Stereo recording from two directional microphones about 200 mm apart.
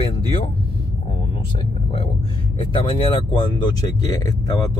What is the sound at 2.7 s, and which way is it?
Speech, 25° left (ahead or behind).